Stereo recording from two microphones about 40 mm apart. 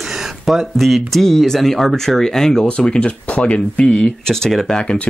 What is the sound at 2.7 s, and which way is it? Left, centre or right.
Speech, left.